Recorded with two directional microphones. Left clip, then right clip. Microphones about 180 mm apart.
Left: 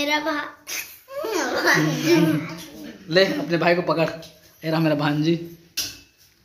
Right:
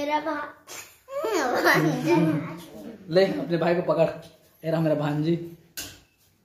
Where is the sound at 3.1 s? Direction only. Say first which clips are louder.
Left 3 dB; 15° left (ahead or behind).